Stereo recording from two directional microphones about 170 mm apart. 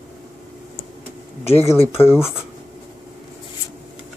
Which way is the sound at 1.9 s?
15° left (ahead or behind).